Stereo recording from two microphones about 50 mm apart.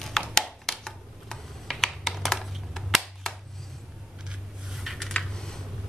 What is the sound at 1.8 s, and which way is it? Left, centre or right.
Computer keyboard, centre.